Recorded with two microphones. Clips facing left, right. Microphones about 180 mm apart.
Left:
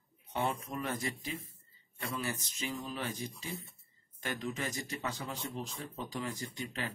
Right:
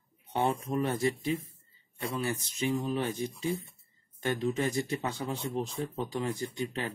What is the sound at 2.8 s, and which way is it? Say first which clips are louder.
Speech: right 8 dB; 30° right (ahead or behind).